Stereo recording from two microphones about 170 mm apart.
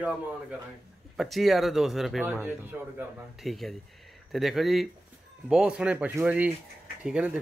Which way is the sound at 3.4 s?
Centre (ahead or behind).